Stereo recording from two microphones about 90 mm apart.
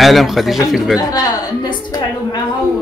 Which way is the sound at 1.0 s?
45° left (ahead or behind).